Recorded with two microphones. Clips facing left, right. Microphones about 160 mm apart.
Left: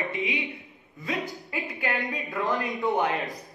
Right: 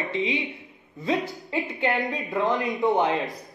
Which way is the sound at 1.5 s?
25° right (ahead or behind).